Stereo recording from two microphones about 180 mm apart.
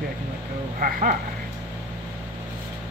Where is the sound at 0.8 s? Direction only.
50° right (ahead or behind).